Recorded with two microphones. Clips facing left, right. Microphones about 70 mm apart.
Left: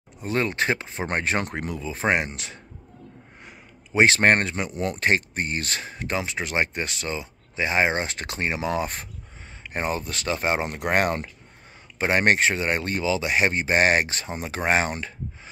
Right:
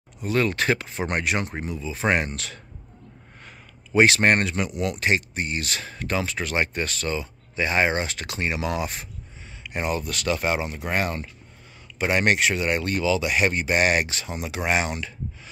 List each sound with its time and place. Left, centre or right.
0.2 s speech: left
1.5 s speech: left
2.0 s speech: left
5.9 s speech: left
10.6 s speech: left
12.0 s speech: left